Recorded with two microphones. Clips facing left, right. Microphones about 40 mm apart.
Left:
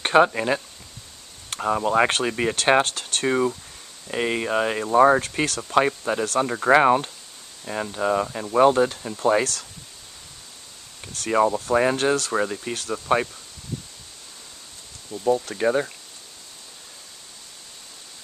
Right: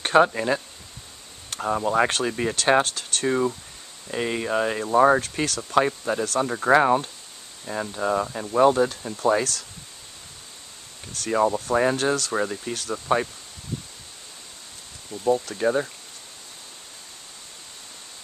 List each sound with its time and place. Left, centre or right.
0.0 s speech: centre
6.7 s speech: left
7.6 s speech: centre
11.4 s speech: centre
15.1 s speech: left
15.4 s speech: centre